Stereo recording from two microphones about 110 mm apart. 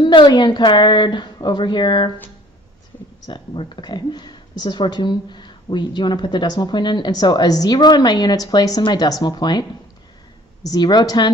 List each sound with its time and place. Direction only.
0.0 s a woman's voice: 45° left (ahead or behind)
3.3 s a woman's voice: 45° left (ahead or behind)